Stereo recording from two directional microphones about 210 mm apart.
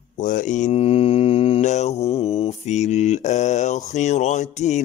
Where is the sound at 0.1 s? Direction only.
35° left (ahead or behind).